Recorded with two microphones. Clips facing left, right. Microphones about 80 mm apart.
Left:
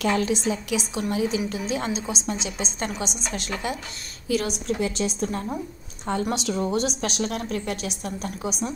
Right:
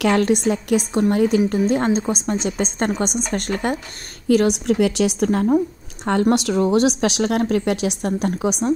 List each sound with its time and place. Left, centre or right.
0.0 s a woman's voice: right